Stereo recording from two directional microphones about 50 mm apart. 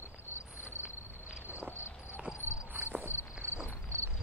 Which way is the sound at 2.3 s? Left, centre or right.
Left.